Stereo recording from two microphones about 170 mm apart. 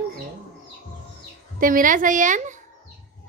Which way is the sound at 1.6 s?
55° right (ahead or behind).